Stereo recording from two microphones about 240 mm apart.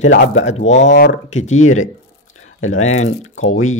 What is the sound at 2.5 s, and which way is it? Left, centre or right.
Speech, left.